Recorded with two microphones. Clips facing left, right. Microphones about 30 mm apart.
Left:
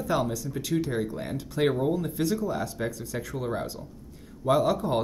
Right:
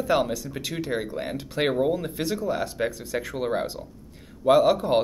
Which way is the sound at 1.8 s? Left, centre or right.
Right.